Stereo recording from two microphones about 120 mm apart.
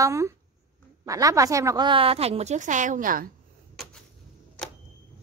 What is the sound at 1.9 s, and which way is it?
A woman's voice, 50° right (ahead or behind).